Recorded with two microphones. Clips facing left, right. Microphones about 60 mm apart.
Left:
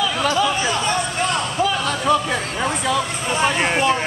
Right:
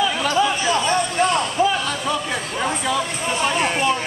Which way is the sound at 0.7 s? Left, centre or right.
Right.